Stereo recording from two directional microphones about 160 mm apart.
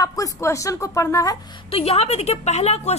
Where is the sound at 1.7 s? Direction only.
40° left (ahead or behind).